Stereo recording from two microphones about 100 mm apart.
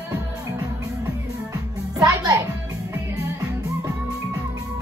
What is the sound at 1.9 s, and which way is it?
Music, 40° right (ahead or behind).